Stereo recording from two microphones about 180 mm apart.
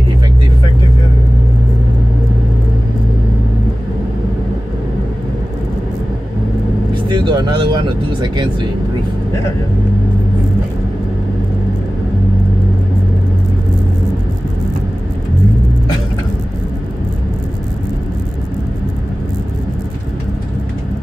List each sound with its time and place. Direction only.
6.9 s speech: 25° right (ahead or behind)